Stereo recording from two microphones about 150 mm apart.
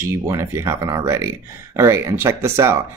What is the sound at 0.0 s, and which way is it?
Speech, 20° right (ahead or behind).